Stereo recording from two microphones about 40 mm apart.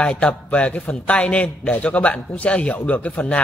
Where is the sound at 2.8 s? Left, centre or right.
Left.